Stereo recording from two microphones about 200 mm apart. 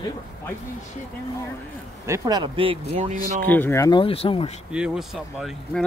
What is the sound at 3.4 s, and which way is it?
Speech, 10° left (ahead or behind).